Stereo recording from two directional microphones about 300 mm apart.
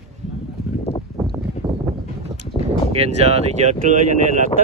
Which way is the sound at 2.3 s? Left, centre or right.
Right.